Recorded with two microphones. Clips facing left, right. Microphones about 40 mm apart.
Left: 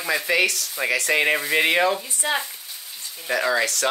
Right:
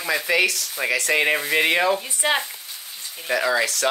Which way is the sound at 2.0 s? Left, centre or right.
Right.